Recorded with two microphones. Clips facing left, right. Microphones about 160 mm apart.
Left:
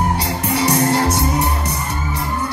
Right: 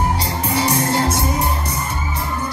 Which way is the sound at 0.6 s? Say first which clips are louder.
Left 2 dB; 70° left (ahead or behind).